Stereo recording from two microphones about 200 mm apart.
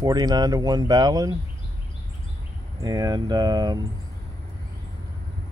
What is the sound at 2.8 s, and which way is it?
Speech, 20° right (ahead or behind).